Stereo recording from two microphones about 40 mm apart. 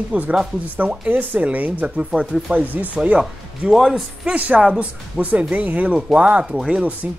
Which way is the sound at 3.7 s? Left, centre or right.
Centre.